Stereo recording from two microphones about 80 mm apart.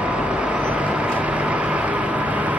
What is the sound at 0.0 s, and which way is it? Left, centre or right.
Vehicle, centre.